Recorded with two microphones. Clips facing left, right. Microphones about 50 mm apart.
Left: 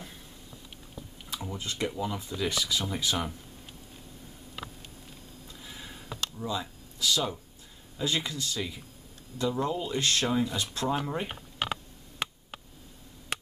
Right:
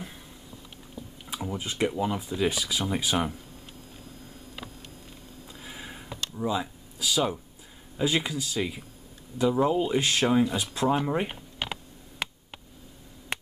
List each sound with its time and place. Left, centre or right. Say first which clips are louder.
1.2 s speech: right 4 dB; centre
5.5 s a sound: right 4 dB; right
8.0 s speech: right 4 dB; centre
11.6 s mechanisms: left 2 dB; centre